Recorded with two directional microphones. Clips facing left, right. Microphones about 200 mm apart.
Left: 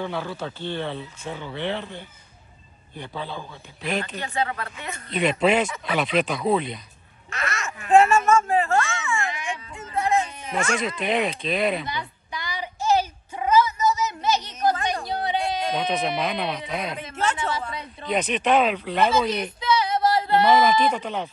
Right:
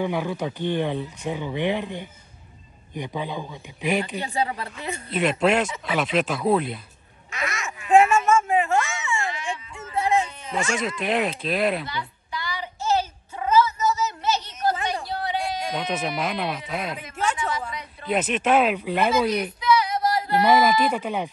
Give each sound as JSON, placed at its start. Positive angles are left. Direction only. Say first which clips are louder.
{"t": 0.0, "sound": "speech", "louder": "right 4 dB", "side_deg": -15}
{"t": 5.1, "sound": "speech", "louder": "even", "side_deg": 0}
{"t": 7.2, "sound": "quack", "louder": "even", "side_deg": -15}
{"t": 7.9, "sound": "a sound", "louder": "even", "side_deg": -15}
{"t": 10.7, "sound": "speech", "louder": "even", "side_deg": 0}
{"t": 11.9, "sound": "child singing", "louder": "even", "side_deg": 20}
{"t": 15.0, "sound": "a sound", "louder": "left 2 dB", "side_deg": 20}
{"t": 15.7, "sound": "speech", "louder": "left 2 dB", "side_deg": -5}
{"t": 17.0, "sound": "a sound", "louder": "left 1 dB", "side_deg": 30}
{"t": 18.0, "sound": "speech", "louder": "even", "side_deg": -5}
{"t": 19.6, "sound": "music", "louder": "left 1 dB", "side_deg": 25}
{"t": 20.4, "sound": "speech", "louder": "right 1 dB", "side_deg": -5}